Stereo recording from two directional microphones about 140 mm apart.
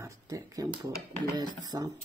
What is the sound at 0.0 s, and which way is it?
Speech, 20° right (ahead or behind).